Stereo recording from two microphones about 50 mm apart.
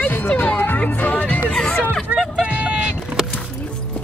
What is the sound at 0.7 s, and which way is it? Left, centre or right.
Music, left.